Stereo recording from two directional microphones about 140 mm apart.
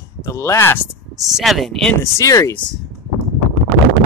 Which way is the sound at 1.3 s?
Centre (ahead or behind).